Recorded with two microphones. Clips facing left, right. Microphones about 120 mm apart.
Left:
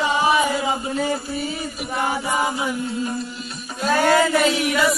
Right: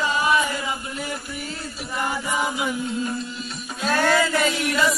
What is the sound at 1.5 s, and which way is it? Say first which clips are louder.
Chant: left 5 dB; 10° left (ahead or behind).